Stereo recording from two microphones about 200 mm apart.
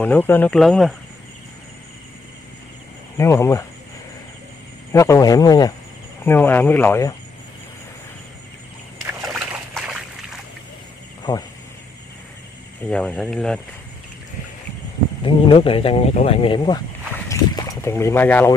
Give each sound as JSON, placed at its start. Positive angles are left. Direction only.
{"t": 0.0, "sound": "speech", "side_deg": 10}
{"t": 3.2, "sound": "speech", "side_deg": 15}
{"t": 4.9, "sound": "speech", "side_deg": 15}
{"t": 9.2, "sound": "a sound", "side_deg": 0}
{"t": 11.3, "sound": "speech", "side_deg": 20}
{"t": 12.8, "sound": "speech", "side_deg": 5}
{"t": 15.2, "sound": "speech", "side_deg": 25}
{"t": 17.3, "sound": "boat", "side_deg": 15}